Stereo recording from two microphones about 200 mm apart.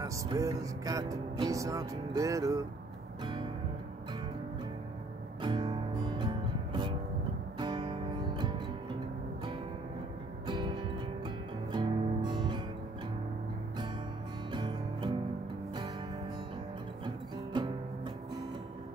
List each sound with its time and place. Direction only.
0.0 s music: 15° right (ahead or behind)
5.4 s music: 20° right (ahead or behind)
10.4 s music: 20° right (ahead or behind)
14.5 s music: 25° right (ahead or behind)